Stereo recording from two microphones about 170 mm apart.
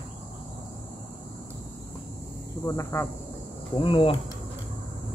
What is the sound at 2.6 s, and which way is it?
Cricket, 20° left (ahead or behind).